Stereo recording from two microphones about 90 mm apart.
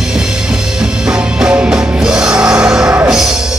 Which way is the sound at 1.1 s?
10° right (ahead or behind).